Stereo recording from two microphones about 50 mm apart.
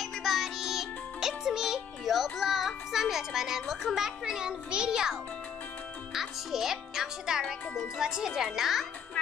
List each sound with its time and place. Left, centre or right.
0.0 s music: centre
6.1 s a child's voice: centre